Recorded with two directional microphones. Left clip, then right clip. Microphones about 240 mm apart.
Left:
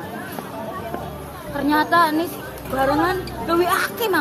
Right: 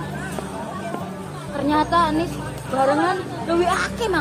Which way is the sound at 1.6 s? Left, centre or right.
Left.